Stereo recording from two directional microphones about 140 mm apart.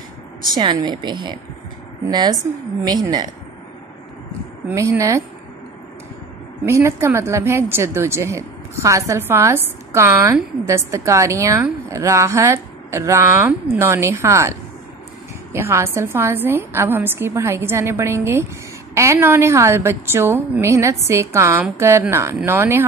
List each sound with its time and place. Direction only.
0.6 s speech: 30° right (ahead or behind)
4.7 s speech: 25° right (ahead or behind)
6.6 s speech: 20° right (ahead or behind)
15.5 s a woman's voice: 20° right (ahead or behind)